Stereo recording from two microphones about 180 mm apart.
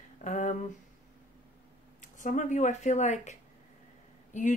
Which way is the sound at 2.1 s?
45° left (ahead or behind).